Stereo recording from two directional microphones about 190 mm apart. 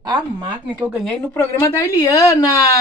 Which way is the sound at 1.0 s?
15° left (ahead or behind).